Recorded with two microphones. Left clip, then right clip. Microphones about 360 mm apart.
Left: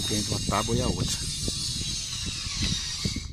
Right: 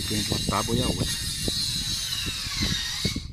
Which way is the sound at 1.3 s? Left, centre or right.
Right.